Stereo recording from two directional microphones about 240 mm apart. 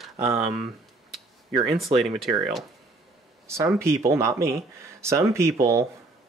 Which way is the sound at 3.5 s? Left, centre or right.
Centre.